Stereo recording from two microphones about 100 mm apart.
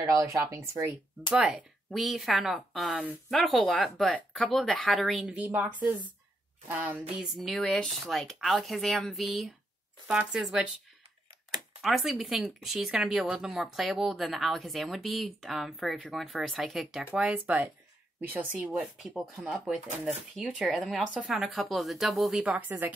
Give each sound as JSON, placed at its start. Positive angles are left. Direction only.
{"t": 0.5, "sound": "speech", "side_deg": -30}
{"t": 1.3, "sound": "speech", "side_deg": -5}
{"t": 5.3, "sound": "speech", "side_deg": -15}
{"t": 7.4, "sound": "speech", "side_deg": 5}
{"t": 11.8, "sound": "speech", "side_deg": 0}
{"t": 17.0, "sound": "speech", "side_deg": -15}
{"t": 19.0, "sound": "speech", "side_deg": 0}
{"t": 20.7, "sound": "speech", "side_deg": 5}
{"t": 22.4, "sound": "speech", "side_deg": -15}